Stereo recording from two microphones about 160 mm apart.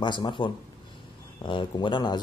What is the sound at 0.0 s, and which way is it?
Speech, 30° left (ahead or behind).